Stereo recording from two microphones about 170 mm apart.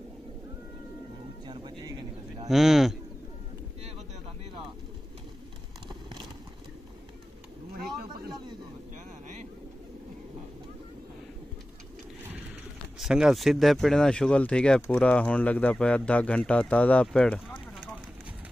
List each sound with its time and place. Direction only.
1.5 s a sound: 25° right (ahead or behind)
2.4 s speech: centre (ahead or behind)
13.0 s speech: 5° right (ahead or behind)